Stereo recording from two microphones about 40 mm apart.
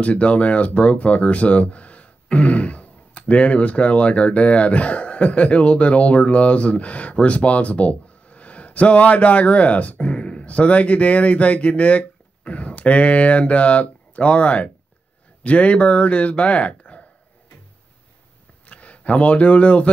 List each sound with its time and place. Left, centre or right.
0.0 s speech: left
18.7 s speech: left